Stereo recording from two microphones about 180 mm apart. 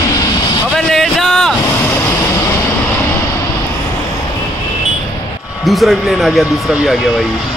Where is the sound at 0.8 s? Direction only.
Centre (ahead or behind).